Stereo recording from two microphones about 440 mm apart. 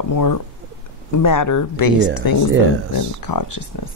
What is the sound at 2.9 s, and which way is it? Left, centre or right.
Speech, left.